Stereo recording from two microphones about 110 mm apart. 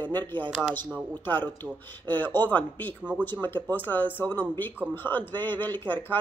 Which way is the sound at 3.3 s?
20° left (ahead or behind).